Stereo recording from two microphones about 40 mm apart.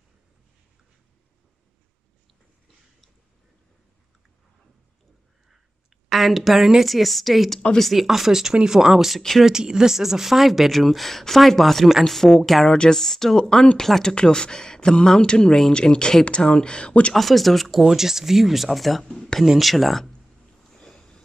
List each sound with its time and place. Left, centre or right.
6.0 s a woman's voice: centre
14.0 s speech: centre
17.1 s speech: centre
20.7 s sniff: centre